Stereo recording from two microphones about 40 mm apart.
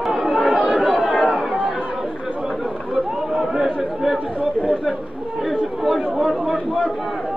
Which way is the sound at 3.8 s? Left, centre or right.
Centre.